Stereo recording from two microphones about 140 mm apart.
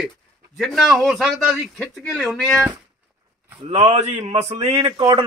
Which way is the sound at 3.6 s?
50° right (ahead or behind).